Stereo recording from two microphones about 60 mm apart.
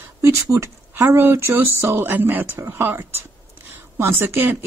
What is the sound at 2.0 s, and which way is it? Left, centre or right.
Speech, right.